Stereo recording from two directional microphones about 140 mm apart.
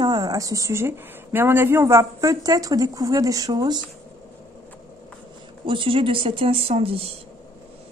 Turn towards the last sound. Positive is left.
turn(degrees=-45)  # may be behind; listen again after turning